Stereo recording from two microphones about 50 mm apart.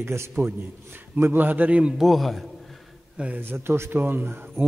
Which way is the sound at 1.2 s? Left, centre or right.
Right.